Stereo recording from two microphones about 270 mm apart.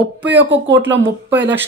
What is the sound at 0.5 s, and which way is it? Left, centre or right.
Speech, right.